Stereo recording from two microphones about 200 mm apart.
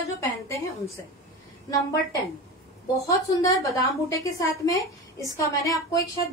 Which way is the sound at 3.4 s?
15° left (ahead or behind).